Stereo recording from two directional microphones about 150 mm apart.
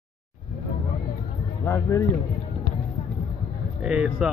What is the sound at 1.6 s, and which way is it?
Speech, 20° left (ahead or behind).